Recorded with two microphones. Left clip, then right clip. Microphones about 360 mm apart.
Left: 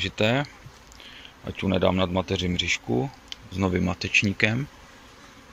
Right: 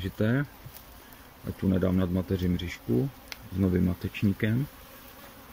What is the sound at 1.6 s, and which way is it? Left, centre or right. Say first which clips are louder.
Speech: left 6 dB; left.